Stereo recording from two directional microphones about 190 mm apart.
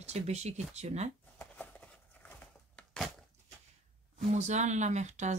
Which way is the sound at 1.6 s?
5° left (ahead or behind).